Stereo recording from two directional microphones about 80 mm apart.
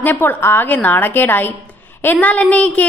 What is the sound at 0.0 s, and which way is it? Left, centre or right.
A woman's voice, left.